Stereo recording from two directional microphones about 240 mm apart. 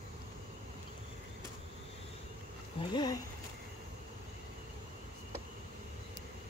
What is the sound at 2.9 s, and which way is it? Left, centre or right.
Speech, centre.